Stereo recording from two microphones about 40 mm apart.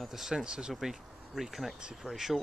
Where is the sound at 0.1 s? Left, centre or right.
Centre.